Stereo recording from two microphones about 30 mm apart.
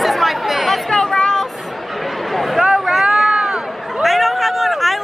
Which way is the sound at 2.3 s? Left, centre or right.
Centre.